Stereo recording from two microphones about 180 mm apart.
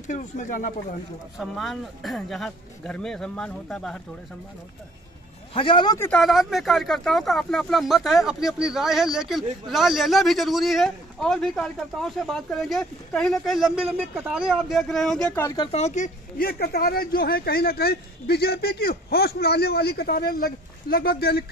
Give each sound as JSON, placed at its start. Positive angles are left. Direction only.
{"t": 0.1, "sound": "speech", "side_deg": 45}
{"t": 1.4, "sound": "speech", "side_deg": 0}
{"t": 5.5, "sound": "speech", "side_deg": 30}
{"t": 5.9, "sound": "speech", "side_deg": 10}
{"t": 6.2, "sound": "speech", "side_deg": 0}
{"t": 15.4, "sound": "speech", "side_deg": 25}
{"t": 15.7, "sound": "speech", "side_deg": 40}